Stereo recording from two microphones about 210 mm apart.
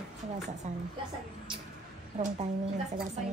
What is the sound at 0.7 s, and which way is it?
Speech, 35° right (ahead or behind).